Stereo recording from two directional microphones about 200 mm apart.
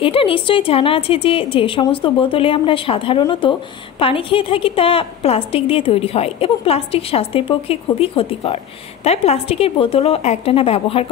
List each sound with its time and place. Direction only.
0.0 s a woman's voice: 25° left (ahead or behind)